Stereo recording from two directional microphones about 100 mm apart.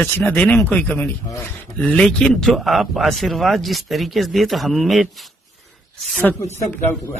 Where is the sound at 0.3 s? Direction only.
20° left (ahead or behind); by 5.1 s centre (ahead or behind).